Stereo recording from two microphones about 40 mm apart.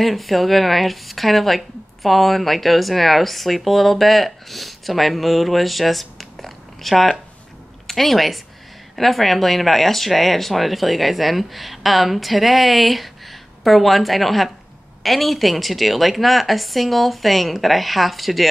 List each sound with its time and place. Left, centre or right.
0.0 s speech: centre